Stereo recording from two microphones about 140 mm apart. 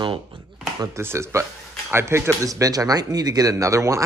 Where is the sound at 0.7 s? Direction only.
20° right (ahead or behind).